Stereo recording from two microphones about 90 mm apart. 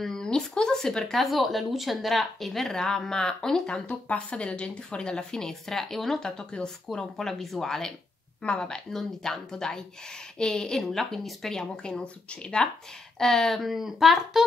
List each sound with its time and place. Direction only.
0.0 s speech: 5° left (ahead or behind)